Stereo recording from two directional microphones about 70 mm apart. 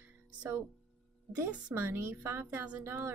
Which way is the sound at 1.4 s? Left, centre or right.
Right.